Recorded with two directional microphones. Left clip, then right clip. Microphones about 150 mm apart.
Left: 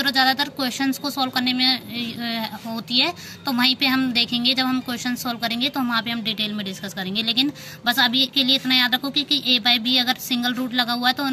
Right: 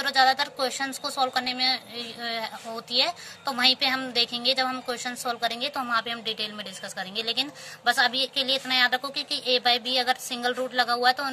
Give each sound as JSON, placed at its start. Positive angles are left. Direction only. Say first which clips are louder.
{"t": 0.0, "sound": "a woman's voice", "louder": "left 2 dB", "side_deg": -35}